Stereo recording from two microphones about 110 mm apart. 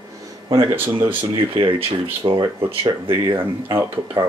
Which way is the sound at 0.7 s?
20° right (ahead or behind).